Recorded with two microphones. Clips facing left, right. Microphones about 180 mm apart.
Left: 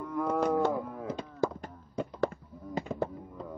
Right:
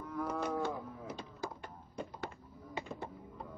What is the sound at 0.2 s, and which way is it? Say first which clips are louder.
Wild animals: left 8 dB; 90° left.